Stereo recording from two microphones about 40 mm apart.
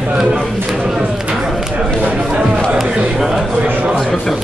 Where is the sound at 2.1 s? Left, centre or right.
Right.